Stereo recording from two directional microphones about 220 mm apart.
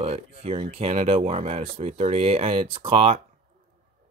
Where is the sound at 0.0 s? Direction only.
25° right (ahead or behind).